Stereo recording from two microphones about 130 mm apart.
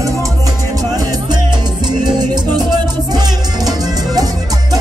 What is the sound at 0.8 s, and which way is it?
Salsa music, 30° right (ahead or behind).